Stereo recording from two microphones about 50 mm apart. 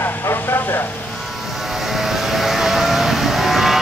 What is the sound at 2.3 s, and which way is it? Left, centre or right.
Vehicle, centre.